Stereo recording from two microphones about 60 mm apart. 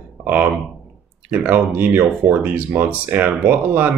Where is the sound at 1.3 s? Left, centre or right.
Right.